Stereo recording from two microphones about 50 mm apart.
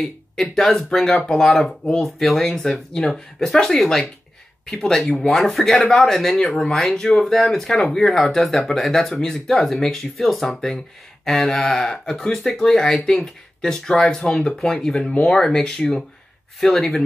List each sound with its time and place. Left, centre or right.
0.0 s speech: centre
15.0 s speech: left
15.3 s speech: centre